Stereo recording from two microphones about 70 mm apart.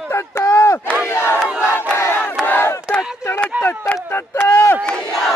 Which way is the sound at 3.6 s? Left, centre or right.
Left.